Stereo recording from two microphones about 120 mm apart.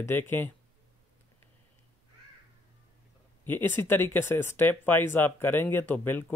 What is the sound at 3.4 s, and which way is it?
Speech, 15° left (ahead or behind).